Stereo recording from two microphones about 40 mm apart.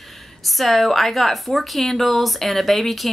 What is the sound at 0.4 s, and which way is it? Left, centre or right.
A woman's voice, centre.